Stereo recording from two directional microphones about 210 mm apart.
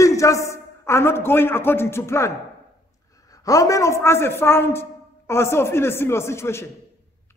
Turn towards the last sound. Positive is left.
turn(degrees=10)  # may be behind; listen again after turning